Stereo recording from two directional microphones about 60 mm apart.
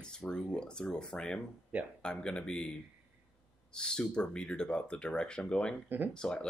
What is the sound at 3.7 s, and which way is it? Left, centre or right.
Speech, centre.